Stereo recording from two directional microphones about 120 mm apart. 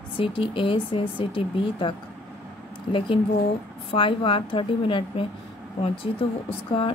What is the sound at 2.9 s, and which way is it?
Speech, 45° left (ahead or behind).